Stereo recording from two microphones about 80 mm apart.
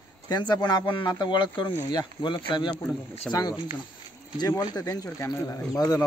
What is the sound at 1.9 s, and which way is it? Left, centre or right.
Speech, left.